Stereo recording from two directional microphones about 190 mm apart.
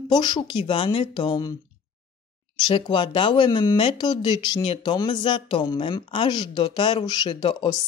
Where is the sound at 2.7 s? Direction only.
25° left (ahead or behind).